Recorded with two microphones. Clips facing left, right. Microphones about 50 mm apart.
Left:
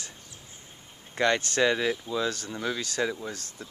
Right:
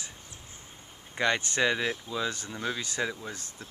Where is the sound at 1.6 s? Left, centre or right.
Centre.